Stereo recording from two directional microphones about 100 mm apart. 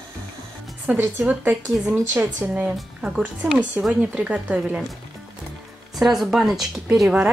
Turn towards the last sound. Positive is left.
turn(degrees=-5)  # may be behind; listen again after turning